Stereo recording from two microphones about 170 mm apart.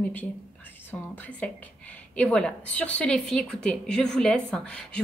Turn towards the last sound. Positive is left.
turn(degrees=5)  # may be behind; listen again after turning